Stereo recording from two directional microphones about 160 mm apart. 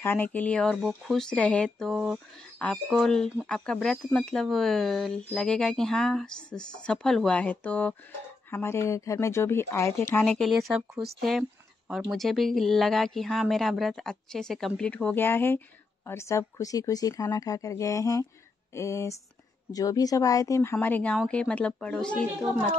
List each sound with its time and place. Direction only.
0.0 s speech: 10° left (ahead or behind)
10.2 s speech: 5° left (ahead or behind)